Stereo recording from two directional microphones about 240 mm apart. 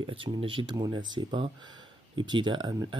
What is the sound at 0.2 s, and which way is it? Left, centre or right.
Speech, right.